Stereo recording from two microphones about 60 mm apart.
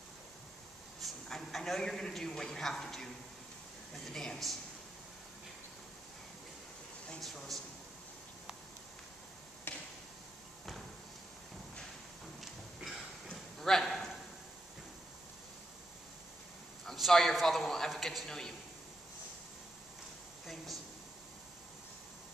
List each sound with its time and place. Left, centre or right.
1.0 s a man's voice: centre
4.1 s a man's voice: centre
7.2 s a man's voice: centre
9.7 s a sound: left
13.3 s a sound: centre
16.8 s a man's voice: centre